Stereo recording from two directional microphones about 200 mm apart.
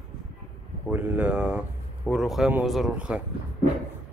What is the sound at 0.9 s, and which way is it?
A man's voice, 5° right (ahead or behind).